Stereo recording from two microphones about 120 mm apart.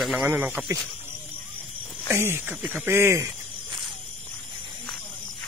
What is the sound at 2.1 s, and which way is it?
Speech, 20° right (ahead or behind).